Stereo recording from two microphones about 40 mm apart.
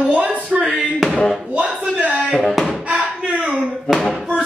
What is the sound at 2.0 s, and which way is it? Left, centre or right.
Music, right.